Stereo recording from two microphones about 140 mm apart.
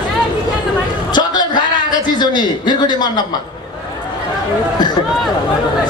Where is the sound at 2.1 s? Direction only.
30° left (ahead or behind).